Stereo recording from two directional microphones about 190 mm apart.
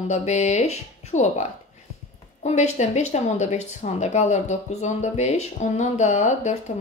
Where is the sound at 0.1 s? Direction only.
35° left (ahead or behind).